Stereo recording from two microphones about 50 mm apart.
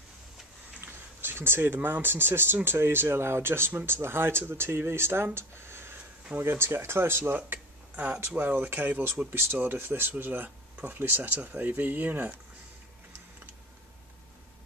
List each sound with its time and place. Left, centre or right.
0.7 s speech: right
7.5 s a sound: right
8.4 s speech: right
11.3 s speech: right